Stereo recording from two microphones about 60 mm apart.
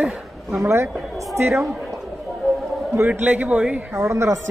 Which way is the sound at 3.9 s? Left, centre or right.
Right.